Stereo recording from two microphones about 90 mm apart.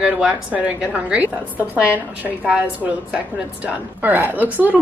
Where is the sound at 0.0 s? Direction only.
10° right (ahead or behind).